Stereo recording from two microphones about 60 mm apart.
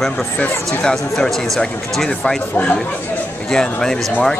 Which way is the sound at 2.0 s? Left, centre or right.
Centre.